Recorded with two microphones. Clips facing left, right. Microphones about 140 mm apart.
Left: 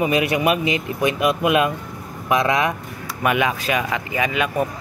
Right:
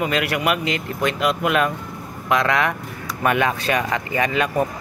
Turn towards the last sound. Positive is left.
turn(degrees=5)  # may be behind; listen again after turning